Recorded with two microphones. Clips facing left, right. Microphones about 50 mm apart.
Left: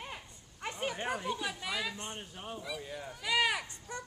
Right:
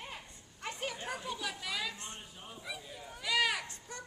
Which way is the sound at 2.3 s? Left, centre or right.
Left.